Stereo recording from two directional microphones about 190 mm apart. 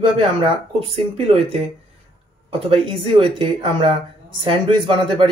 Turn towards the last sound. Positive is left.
turn(degrees=-25)  # may be behind; listen again after turning